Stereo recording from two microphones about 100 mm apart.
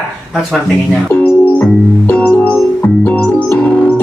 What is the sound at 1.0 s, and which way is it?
Music, 25° left (ahead or behind).